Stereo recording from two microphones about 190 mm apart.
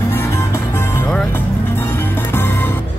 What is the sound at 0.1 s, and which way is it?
Music, 10° left (ahead or behind).